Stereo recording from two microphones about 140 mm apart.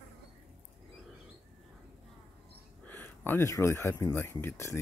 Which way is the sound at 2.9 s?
15° left (ahead or behind).